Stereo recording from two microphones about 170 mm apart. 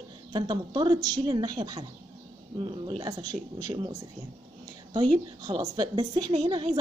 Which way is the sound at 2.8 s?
25° right (ahead or behind).